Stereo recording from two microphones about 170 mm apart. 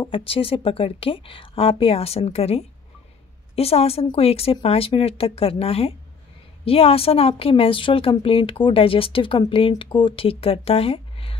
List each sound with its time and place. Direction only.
0.0 s a woman's voice: 30° left (ahead or behind)